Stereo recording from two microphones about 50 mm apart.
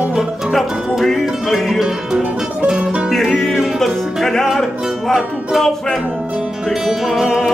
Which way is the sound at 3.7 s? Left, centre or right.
Centre.